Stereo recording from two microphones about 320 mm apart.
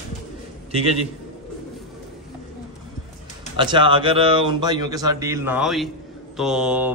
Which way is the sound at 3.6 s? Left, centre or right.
Centre.